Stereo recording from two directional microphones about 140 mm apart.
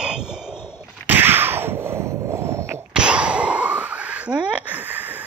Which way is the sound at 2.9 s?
5° right (ahead or behind).